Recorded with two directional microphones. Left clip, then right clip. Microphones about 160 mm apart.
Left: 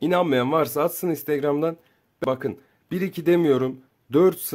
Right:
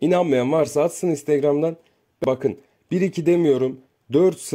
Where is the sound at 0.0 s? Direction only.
10° right (ahead or behind).